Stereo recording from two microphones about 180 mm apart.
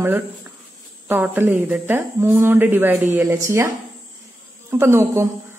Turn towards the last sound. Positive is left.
turn(degrees=-15)  # may be behind; listen again after turning